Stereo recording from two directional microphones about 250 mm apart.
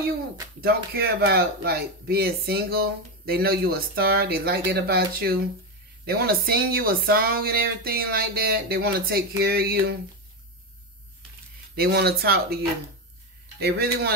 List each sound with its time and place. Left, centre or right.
0.9 s speech: right
11.7 s speech: right
13.6 s speech: right